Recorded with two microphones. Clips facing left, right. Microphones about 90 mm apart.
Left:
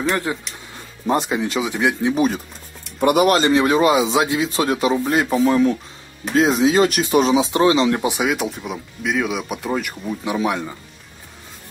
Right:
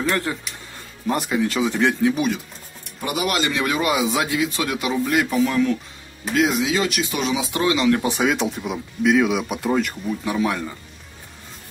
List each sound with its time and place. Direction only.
0.1 s speech: 20° left (ahead or behind)
2.0 s speech: 35° left (ahead or behind)
3.0 s speech: 55° left (ahead or behind)
3.3 s speech: 35° left (ahead or behind); by 8.3 s 15° left (ahead or behind)
8.3 s speech: centre (ahead or behind)
10.0 s speech: 15° left (ahead or behind)